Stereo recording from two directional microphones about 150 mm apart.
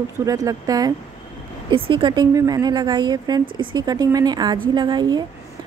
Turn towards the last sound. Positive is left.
turn(degrees=-30)  # may be behind; listen again after turning